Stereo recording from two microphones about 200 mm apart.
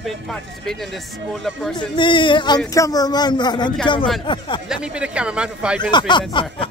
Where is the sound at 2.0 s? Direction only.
25° left (ahead or behind).